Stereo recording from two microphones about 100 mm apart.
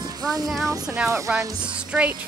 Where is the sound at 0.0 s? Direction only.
40° right (ahead or behind).